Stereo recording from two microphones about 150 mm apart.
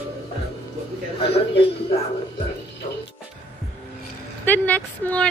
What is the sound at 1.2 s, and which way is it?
Speech, 40° left (ahead or behind).